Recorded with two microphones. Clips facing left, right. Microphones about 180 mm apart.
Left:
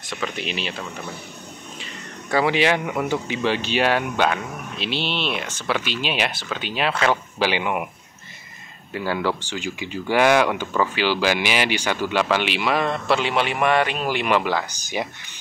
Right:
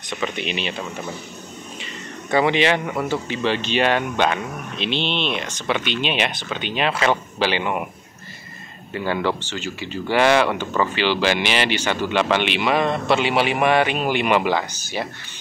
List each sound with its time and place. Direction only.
0.1 s a man's voice: centre (ahead or behind)
2.3 s a man's voice: 5° left (ahead or behind)
7.3 s speech: 10° left (ahead or behind)
8.9 s a man's voice: 5° left (ahead or behind)
14.7 s speech: 15° left (ahead or behind)